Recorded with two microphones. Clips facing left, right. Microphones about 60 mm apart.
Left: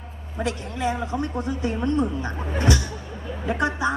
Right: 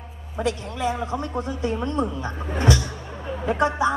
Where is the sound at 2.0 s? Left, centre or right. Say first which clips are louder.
Left 1 dB; right.